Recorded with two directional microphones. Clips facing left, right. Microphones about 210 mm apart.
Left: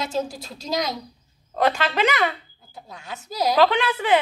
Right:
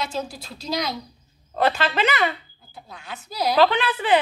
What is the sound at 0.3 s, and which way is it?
Speech, 45° left (ahead or behind).